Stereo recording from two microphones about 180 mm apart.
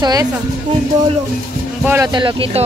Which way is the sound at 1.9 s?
20° right (ahead or behind).